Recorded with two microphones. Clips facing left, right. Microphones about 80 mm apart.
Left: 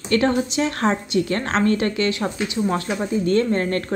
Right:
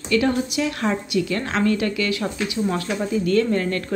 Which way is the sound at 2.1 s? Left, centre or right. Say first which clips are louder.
Left 1 dB; left.